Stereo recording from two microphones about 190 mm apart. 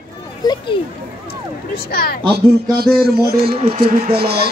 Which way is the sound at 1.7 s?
55° left (ahead or behind).